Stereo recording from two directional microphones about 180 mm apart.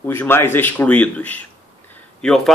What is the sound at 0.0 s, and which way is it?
A man's voice, 10° left (ahead or behind).